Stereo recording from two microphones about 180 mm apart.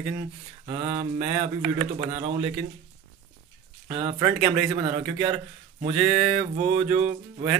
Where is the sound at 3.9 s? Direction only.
30° right (ahead or behind).